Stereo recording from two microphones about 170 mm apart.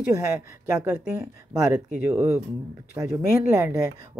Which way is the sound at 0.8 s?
15° right (ahead or behind).